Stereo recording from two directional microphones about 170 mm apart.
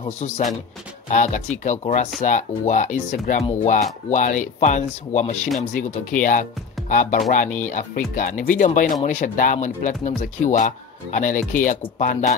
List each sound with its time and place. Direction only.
0.2 s speech: 40° left (ahead or behind)